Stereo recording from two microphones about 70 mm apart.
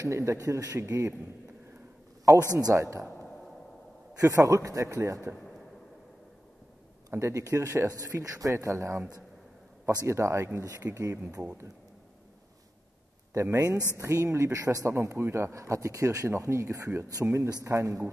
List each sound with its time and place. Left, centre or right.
0.0 s speech: right
0.7 s speech: right
2.7 s speech: right
4.2 s speech: right
7.1 s speech: right
10.0 s speech: right
13.3 s speech: right
14.9 s speech: right